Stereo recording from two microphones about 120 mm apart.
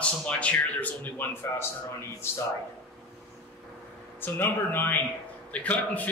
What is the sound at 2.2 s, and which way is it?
Speech, 20° left (ahead or behind).